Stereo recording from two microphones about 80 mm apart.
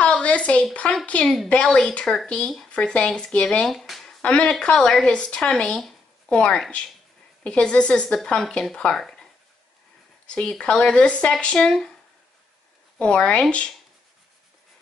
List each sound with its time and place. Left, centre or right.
0.0 s a sound: centre
0.7 s speech: centre
1.2 s a woman's voice: centre
4.2 s speech: centre
13.0 s speech: centre